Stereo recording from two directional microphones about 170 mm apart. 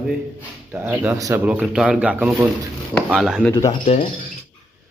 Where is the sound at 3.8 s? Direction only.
45° left (ahead or behind).